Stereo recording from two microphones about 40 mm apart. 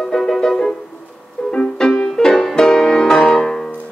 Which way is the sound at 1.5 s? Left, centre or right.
Centre.